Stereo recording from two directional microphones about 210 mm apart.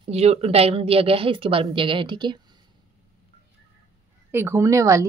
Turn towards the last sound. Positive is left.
turn(degrees=-15)  # may be behind; listen again after turning